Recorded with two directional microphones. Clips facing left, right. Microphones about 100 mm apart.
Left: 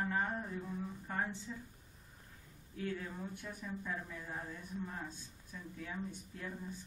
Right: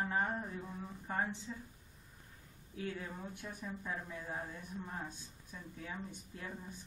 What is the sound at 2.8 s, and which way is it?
A woman's voice, 10° right (ahead or behind).